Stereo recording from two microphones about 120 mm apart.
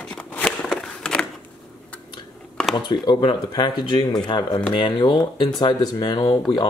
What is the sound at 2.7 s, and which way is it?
Speech, 40° left (ahead or behind).